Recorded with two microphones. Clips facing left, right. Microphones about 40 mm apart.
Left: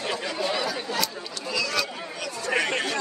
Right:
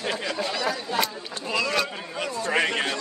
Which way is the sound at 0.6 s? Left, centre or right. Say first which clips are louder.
Right 2 dB; right.